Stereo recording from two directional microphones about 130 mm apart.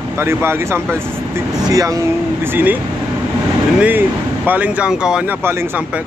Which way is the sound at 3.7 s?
15° right (ahead or behind).